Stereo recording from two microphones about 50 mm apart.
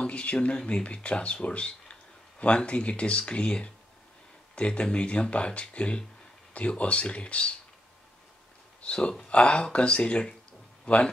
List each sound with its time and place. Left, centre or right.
0.0 s speech: left
8.8 s speech: left